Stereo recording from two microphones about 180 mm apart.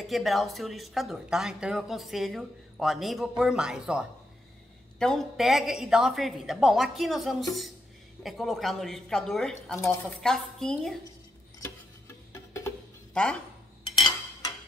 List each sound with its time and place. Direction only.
0.0 s speech: centre (ahead or behind)
9.8 s speech: 15° left (ahead or behind)
10.2 s speech: 5° left (ahead or behind)
12.3 s music: 15° left (ahead or behind)